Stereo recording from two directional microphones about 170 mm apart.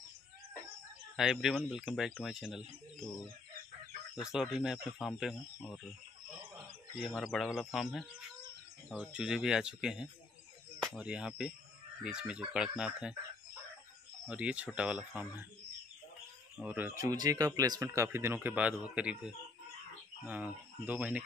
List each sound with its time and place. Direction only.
1.1 s speech: centre (ahead or behind)
4.2 s speech: 5° right (ahead or behind)
7.0 s speech: centre (ahead or behind)
14.2 s speech: 5° right (ahead or behind)
16.5 s speech: 5° right (ahead or behind)